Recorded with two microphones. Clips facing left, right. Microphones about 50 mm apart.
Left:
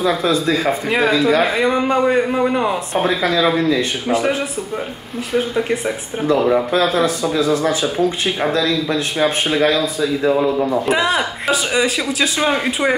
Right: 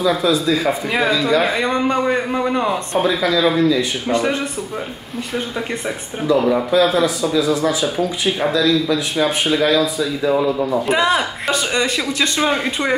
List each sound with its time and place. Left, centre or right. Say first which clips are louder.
0.0 s speech: even; left
0.8 s speech: left 5 dB; centre
3.0 s speech: even; left
4.1 s speech: left 1 dB; centre
6.2 s speech: left 1 dB; left
10.9 s speech: even; centre